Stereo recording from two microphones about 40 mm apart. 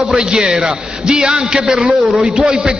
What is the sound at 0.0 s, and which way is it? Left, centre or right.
A man's voice, centre.